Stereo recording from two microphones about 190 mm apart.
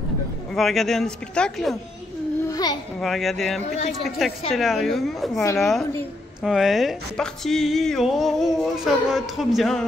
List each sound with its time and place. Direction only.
0.6 s speech: centre (ahead or behind)
2.5 s a sound: 20° left (ahead or behind)
3.0 s speech: centre (ahead or behind)